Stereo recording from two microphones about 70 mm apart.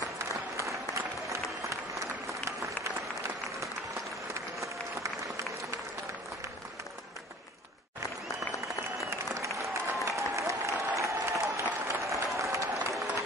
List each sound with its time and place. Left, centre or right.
0.6 s applause: right
2.4 s applause: right
9.3 s applause: right